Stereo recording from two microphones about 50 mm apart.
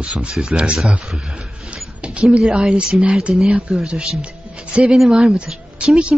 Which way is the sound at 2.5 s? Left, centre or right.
Centre.